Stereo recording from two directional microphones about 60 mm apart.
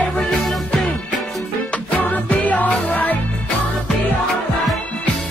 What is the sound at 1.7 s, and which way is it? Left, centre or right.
Music, left.